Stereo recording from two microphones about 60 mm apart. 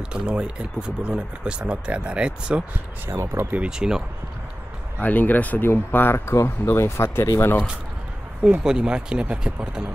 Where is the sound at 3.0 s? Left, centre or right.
Right.